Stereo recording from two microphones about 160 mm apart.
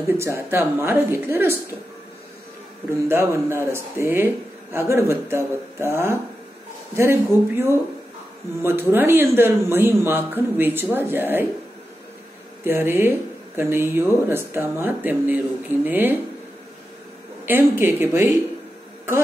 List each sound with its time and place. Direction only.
0.0 s speech: 15° right (ahead or behind)
3.1 s speech: 15° right (ahead or behind)
12.6 s speech: 15° right (ahead or behind)
17.5 s speech: 15° right (ahead or behind)